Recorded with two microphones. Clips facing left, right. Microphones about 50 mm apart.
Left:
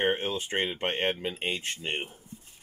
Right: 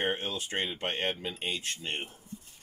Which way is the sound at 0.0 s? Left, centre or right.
Left.